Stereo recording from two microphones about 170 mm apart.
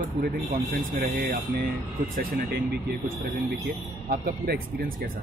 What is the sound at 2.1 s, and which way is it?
Speech, 75° right (ahead or behind).